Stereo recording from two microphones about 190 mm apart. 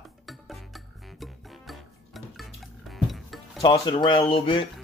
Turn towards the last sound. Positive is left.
turn(degrees=30)  # may be behind; listen again after turning